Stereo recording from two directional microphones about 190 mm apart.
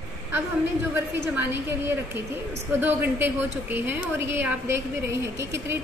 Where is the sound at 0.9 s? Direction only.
10° right (ahead or behind).